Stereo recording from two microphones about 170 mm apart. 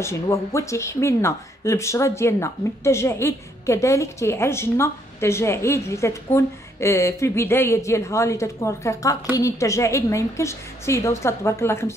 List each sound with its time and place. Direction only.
0.0 s speech: 15° left (ahead or behind)